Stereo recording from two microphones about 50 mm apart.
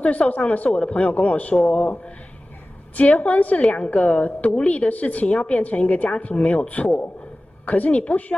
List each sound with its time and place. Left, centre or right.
0.0 s a woman's voice: left
3.2 s a woman's voice: left